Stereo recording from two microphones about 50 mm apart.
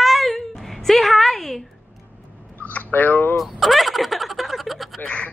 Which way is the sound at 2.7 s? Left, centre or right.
Left.